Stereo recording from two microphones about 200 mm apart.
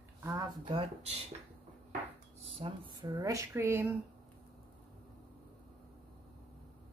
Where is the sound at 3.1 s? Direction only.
15° right (ahead or behind).